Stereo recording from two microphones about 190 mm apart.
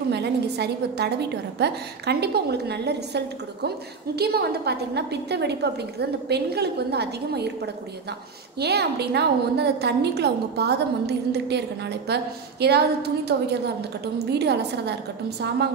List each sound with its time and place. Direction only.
0.1 s a woman's voice: 60° right (ahead or behind)